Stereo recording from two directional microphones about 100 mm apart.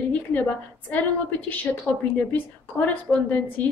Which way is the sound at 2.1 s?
15° left (ahead or behind).